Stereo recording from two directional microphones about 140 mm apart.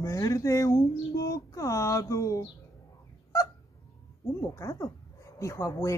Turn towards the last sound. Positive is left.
turn(degrees=20)  # may be behind; listen again after turning